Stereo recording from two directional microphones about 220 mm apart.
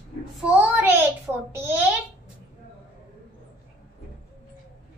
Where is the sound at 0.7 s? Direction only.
10° right (ahead or behind).